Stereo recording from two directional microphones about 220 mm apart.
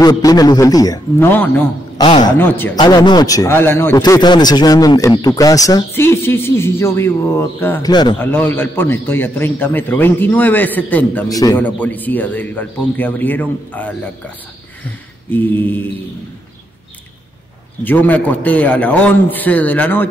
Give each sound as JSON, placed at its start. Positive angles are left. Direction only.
{"t": 0.0, "sound": "speech", "side_deg": 15}
{"t": 2.0, "sound": "a man's voice", "side_deg": 20}
{"t": 2.3, "sound": "speech", "side_deg": 10}
{"t": 2.8, "sound": "speech", "side_deg": 20}
{"t": 15.3, "sound": "speech", "side_deg": 10}
{"t": 17.8, "sound": "speech", "side_deg": 10}